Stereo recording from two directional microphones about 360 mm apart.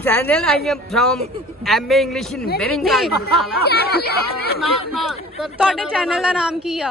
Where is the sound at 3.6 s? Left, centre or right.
Left.